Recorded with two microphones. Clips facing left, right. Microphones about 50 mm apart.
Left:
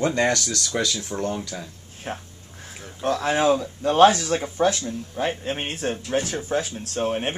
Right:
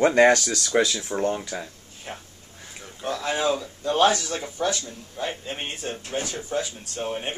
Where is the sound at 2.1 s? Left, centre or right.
Left.